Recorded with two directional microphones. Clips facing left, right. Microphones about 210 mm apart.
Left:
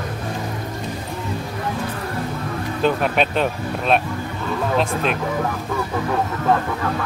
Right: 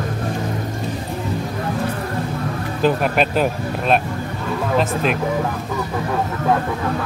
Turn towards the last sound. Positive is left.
turn(degrees=-5)  # may be behind; listen again after turning